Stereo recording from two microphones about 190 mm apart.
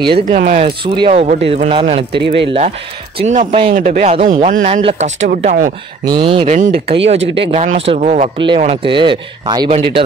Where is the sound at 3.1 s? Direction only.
35° right (ahead or behind).